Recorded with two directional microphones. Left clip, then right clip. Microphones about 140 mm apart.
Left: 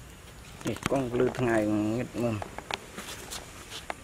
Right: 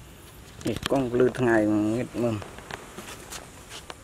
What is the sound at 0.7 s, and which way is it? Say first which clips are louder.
Speech: right 3 dB; 15° right (ahead or behind).